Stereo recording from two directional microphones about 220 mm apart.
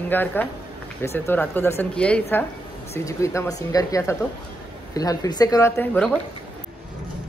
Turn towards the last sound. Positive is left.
turn(degrees=5)  # may be behind; listen again after turning